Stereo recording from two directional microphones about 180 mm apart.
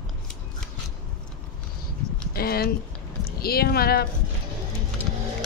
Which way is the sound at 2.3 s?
60° left (ahead or behind).